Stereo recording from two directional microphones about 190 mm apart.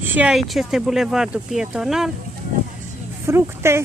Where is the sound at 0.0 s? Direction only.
10° right (ahead or behind).